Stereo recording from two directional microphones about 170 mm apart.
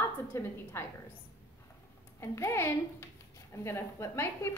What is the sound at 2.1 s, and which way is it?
A woman's voice, 15° left (ahead or behind).